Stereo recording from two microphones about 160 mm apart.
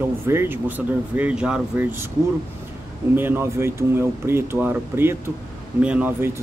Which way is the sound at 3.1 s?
15° right (ahead or behind).